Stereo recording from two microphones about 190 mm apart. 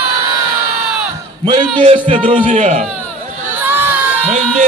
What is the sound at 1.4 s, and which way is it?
Speech, 25° right (ahead or behind).